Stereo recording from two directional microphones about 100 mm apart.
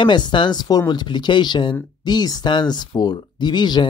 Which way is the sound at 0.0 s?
50° left (ahead or behind).